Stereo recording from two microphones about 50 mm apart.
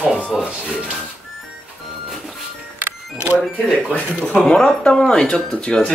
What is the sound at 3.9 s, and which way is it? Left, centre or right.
Speech, left.